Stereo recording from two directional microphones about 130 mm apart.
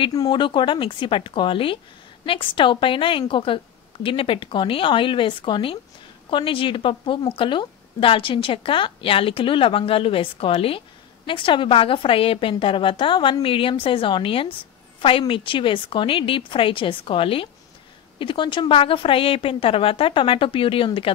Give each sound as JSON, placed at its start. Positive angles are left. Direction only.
{"t": 0.1, "sound": "a woman's voice", "side_deg": 30}